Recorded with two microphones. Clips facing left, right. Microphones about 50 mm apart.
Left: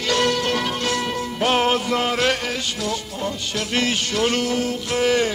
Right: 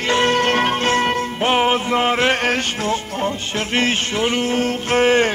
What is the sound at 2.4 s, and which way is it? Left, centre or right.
Music, right.